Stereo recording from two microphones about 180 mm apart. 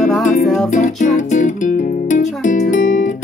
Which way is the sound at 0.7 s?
40° left (ahead or behind).